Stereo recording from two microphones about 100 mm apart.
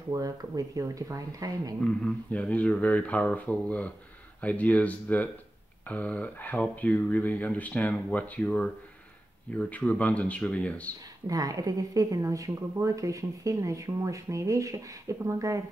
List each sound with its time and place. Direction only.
0.1 s a woman's voice: 35° right (ahead or behind)
1.9 s speech: 15° left (ahead or behind)
11.2 s a woman's voice: 35° right (ahead or behind)